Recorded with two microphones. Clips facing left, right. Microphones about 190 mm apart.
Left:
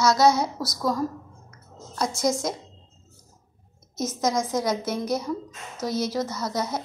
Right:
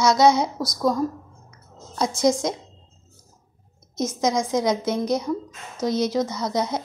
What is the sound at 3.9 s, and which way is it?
Speech, 5° left (ahead or behind).